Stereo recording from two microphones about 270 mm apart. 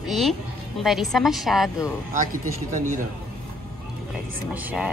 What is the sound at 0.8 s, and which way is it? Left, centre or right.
Speech, centre.